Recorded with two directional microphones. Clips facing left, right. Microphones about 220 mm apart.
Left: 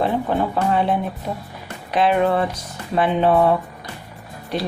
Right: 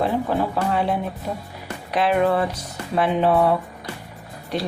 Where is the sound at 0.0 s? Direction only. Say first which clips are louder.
Left 1 dB; 5° right (ahead or behind).